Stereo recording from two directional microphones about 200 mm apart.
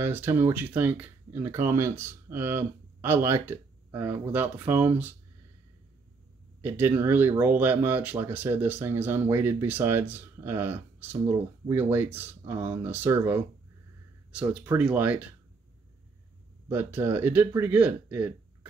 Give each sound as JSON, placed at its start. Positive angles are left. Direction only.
{"t": 0.0, "sound": "speech", "side_deg": -10}
{"t": 6.6, "sound": "speech", "side_deg": -10}
{"t": 16.6, "sound": "speech", "side_deg": -10}